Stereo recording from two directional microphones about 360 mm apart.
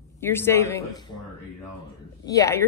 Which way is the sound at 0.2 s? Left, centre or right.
Centre.